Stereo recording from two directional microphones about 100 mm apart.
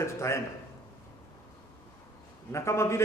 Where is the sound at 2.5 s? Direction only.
30° left (ahead or behind).